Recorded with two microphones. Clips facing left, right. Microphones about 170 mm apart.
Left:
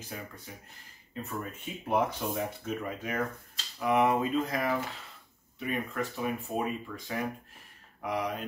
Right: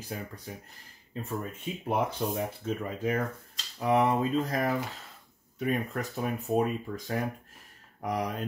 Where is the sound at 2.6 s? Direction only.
30° right (ahead or behind).